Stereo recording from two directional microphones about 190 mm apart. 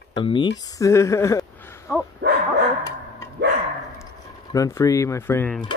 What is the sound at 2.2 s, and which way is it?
Dog, 60° right (ahead or behind).